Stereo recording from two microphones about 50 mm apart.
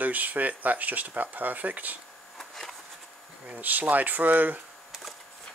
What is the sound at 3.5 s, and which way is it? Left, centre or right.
Speech, right.